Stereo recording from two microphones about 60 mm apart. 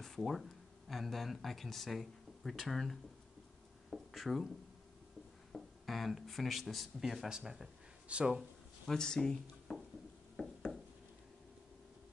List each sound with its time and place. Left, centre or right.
0.0 s speech: centre
3.9 s a sound: centre
5.5 s speech: centre
8.1 s speech: centre
8.9 s speech: centre
10.4 s a sound: left